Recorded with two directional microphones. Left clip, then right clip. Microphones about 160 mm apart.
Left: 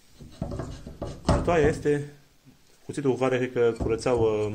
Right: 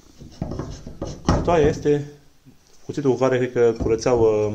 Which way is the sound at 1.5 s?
Centre (ahead or behind).